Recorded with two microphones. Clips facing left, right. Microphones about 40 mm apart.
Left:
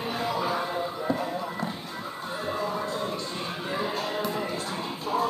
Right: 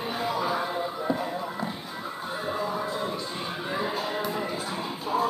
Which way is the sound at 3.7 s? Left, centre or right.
Centre.